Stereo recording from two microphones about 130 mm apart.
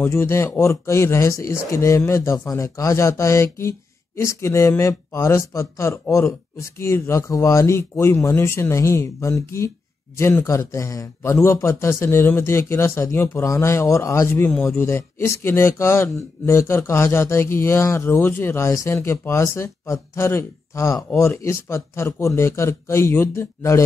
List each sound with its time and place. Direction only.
0.0 s speech: 20° left (ahead or behind)